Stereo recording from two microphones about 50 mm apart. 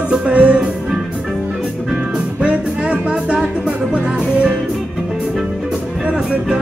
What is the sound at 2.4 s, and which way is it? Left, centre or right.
Music, right.